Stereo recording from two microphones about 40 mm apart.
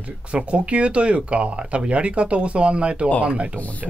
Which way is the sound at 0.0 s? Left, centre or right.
Right.